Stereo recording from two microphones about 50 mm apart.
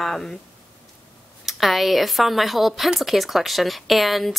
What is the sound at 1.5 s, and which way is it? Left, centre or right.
A woman's voice, centre.